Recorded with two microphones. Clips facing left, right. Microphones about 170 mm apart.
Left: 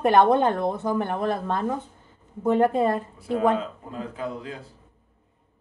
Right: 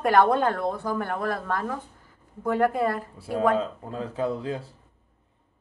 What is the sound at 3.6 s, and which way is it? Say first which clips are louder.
Speech: right 2 dB; 30° right (ahead or behind).